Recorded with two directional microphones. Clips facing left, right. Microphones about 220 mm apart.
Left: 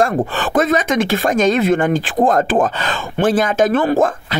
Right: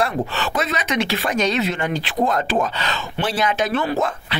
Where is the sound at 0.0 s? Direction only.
50° left (ahead or behind).